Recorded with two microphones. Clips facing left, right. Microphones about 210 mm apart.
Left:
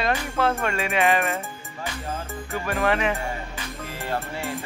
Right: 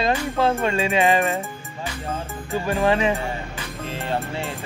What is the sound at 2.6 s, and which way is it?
Speech, 30° right (ahead or behind).